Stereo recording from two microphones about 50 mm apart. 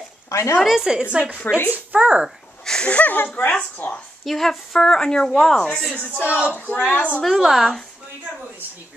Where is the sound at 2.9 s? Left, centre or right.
Left.